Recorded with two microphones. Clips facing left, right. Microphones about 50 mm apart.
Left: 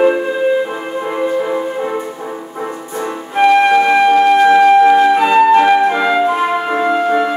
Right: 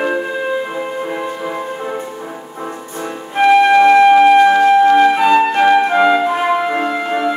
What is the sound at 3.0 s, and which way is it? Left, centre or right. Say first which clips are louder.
Flute: left 1 dB; centre.